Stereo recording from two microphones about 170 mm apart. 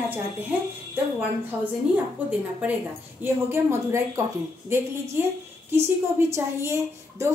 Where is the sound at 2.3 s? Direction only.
10° right (ahead or behind).